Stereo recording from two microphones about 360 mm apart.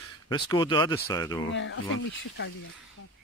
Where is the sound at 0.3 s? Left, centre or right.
Centre.